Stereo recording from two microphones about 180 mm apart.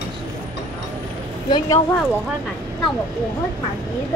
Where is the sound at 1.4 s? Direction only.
20° left (ahead or behind).